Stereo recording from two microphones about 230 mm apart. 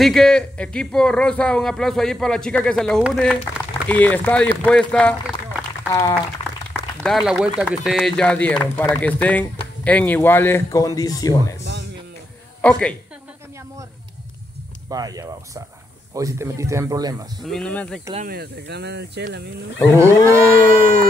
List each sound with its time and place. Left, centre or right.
0.0 s speech: centre
4.6 s a sound: centre
7.0 s speech: centre
12.6 s speech: centre
14.9 s speech: centre
17.4 s speech: centre
18.1 s speech: right
20.0 s speech: centre